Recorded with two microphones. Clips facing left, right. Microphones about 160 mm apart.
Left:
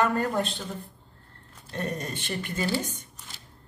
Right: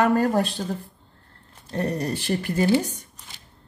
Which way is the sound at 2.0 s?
35° right (ahead or behind).